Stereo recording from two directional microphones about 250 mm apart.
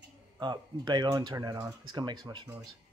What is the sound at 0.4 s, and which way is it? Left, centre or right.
A man's voice, centre.